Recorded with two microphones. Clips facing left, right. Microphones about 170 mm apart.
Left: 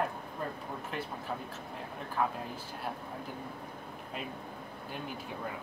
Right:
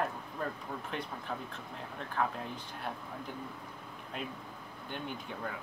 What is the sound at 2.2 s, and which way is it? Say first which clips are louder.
Speech: left 1 dB; 5° left (ahead or behind).